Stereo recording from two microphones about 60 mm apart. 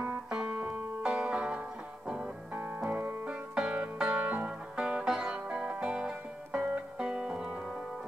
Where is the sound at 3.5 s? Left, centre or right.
Centre.